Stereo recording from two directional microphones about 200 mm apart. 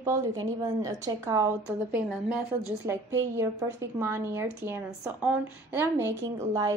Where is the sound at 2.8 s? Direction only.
15° right (ahead or behind).